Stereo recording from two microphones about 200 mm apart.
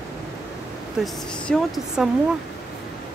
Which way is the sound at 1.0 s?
Centre (ahead or behind).